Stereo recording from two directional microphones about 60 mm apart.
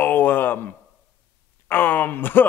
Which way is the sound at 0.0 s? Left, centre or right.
Left.